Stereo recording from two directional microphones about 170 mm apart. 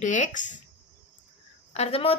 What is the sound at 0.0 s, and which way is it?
Speech, 45° left (ahead or behind).